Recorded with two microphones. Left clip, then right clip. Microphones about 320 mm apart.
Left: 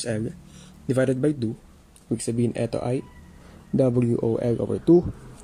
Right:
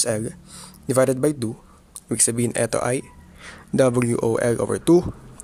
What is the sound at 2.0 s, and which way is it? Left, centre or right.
Speech, right.